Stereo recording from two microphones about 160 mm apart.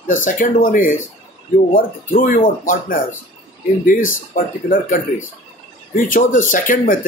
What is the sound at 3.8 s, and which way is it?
Speech, 60° left (ahead or behind).